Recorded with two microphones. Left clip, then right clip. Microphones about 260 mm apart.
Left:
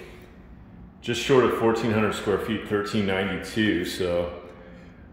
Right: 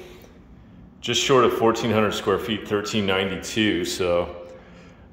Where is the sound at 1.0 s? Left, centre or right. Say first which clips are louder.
Right 3 dB; centre.